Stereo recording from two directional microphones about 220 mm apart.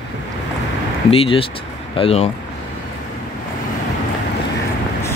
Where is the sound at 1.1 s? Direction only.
25° left (ahead or behind).